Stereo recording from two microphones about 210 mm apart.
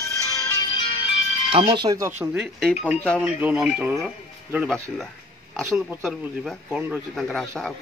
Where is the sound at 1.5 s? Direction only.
20° right (ahead or behind).